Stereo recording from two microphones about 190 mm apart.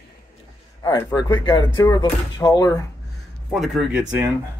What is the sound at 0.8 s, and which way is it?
Speech, 20° left (ahead or behind).